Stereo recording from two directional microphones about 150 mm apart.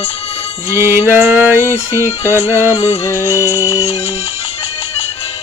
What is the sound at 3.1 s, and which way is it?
Music, 20° left (ahead or behind).